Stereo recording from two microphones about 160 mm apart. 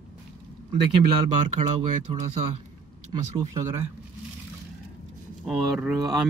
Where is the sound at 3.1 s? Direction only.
20° right (ahead or behind).